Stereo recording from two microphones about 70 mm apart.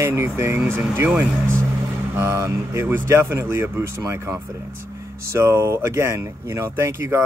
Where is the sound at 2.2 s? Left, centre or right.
Right.